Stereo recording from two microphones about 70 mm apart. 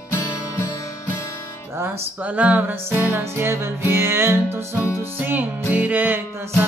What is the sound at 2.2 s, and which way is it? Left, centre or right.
Music, right.